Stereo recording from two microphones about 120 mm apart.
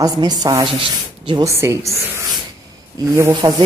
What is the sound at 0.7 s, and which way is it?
Speech, 45° right (ahead or behind).